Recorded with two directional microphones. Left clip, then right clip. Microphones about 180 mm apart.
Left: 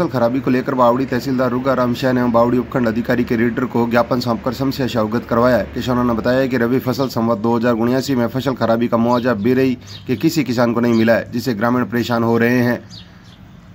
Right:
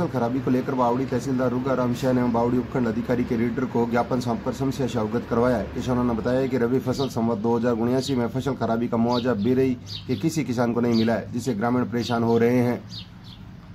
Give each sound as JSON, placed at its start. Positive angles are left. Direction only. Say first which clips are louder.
{"t": 0.0, "sound": "a man's voice", "louder": "left 8 dB", "side_deg": 20}